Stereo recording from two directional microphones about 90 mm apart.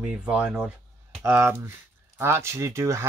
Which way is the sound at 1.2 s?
25° right (ahead or behind).